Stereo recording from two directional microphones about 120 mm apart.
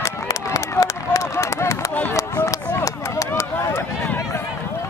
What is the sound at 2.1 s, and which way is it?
Run, 25° left (ahead or behind).